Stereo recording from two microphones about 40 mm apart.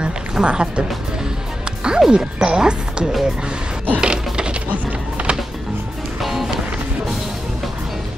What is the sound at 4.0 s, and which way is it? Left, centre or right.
Music, right.